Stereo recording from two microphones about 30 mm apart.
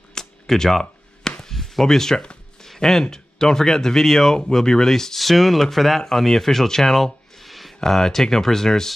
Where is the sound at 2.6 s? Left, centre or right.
Centre.